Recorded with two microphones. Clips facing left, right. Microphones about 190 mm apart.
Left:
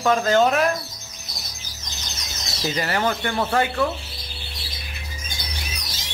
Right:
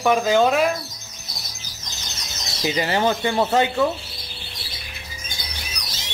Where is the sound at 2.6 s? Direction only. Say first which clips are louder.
Right 3 dB; 15° right (ahead or behind).